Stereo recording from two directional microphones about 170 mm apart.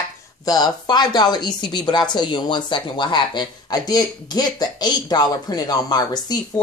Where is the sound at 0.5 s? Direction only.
25° left (ahead or behind).